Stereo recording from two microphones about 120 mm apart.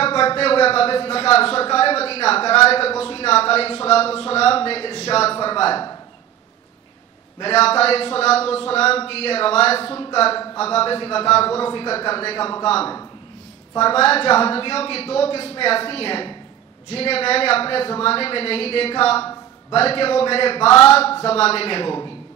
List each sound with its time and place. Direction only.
0.0 s speech: 50° left (ahead or behind)
5.4 s speech: 50° left (ahead or behind)
7.3 s a man's voice: 55° left (ahead or behind)
10.4 s speech: 30° left (ahead or behind)
10.7 s a man's voice: 50° left (ahead or behind)